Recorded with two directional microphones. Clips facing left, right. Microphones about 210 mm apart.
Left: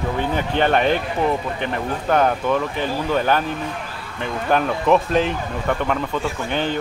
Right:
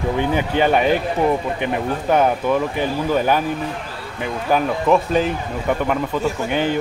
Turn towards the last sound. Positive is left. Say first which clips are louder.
# right 3 dB
turn(degrees=-10)  # may be behind; listen again after turning